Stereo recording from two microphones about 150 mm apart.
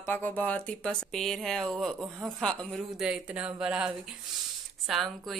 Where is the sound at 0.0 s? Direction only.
10° left (ahead or behind).